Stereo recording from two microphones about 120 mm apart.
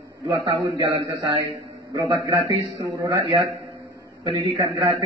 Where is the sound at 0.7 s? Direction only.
55° right (ahead or behind).